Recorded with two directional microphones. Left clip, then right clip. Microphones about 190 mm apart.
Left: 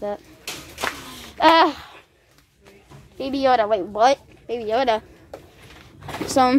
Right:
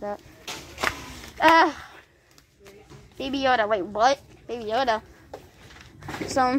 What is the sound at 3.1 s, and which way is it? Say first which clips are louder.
A woman's voice: left 4 dB; 5° left (ahead or behind).